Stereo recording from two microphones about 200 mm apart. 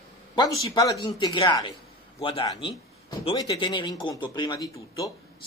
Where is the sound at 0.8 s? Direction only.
20° left (ahead or behind).